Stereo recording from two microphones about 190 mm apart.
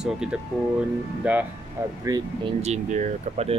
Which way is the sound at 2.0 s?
20° right (ahead or behind).